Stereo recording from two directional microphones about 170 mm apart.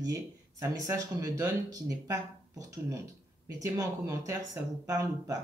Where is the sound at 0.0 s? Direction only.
20° right (ahead or behind).